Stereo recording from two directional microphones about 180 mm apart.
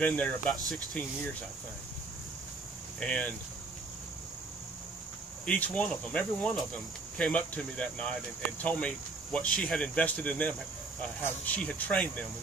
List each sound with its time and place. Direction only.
0.0 s speech: 10° left (ahead or behind)
3.0 s speech: 5° left (ahead or behind)
5.4 s speech: 10° left (ahead or behind)